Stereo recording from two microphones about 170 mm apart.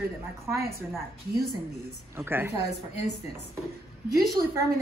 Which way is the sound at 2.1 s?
15° right (ahead or behind).